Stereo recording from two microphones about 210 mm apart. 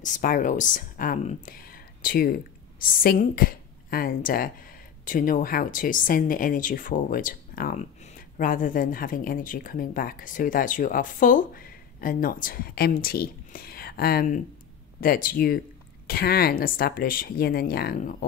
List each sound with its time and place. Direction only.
0.0 s speech: 40° left (ahead or behind)